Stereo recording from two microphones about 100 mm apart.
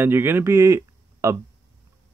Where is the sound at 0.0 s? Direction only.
20° right (ahead or behind).